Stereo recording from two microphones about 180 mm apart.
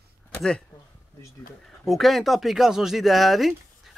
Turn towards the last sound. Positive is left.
turn(degrees=0)  # may be behind; listen again after turning